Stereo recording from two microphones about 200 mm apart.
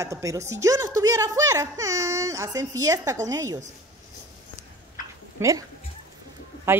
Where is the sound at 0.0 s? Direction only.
15° right (ahead or behind).